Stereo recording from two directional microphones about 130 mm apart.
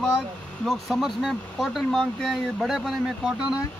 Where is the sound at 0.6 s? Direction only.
Centre (ahead or behind).